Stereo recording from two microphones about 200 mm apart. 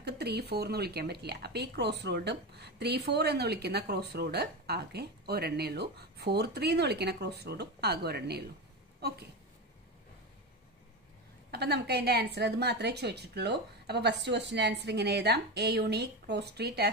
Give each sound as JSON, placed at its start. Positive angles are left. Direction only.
{"t": 0.0, "sound": "speech", "side_deg": -55}
{"t": 11.5, "sound": "speech", "side_deg": -55}